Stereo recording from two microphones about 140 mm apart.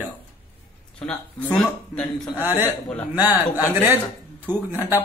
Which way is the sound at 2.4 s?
15° right (ahead or behind).